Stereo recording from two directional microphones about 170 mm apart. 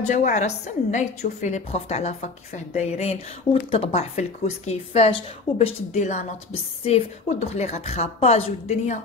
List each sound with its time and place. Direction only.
0.0 s a woman's voice: 45° left (ahead or behind)